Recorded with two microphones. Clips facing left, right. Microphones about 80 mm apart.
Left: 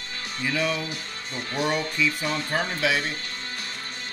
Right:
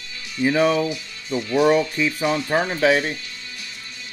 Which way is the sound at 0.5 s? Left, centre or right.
Right.